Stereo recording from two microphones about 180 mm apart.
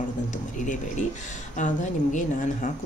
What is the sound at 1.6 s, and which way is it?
Speech, 45° left (ahead or behind).